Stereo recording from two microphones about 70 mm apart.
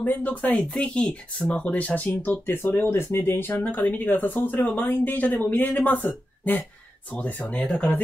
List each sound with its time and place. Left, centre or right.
0.0 s speech: left